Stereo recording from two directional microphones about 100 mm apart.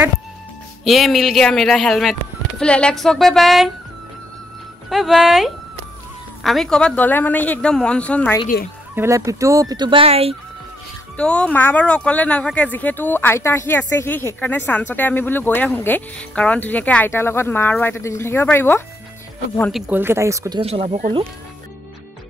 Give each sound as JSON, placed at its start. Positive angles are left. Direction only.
{"t": 0.8, "sound": "speech", "side_deg": 0}
{"t": 4.8, "sound": "speech", "side_deg": 0}
{"t": 7.0, "sound": "speech", "side_deg": 15}
{"t": 8.9, "sound": "speech", "side_deg": -30}
{"t": 9.8, "sound": "speech", "side_deg": -75}
{"t": 11.1, "sound": "speech", "side_deg": 10}
{"t": 19.9, "sound": "speech", "side_deg": -25}
{"t": 20.6, "sound": "speech", "side_deg": -85}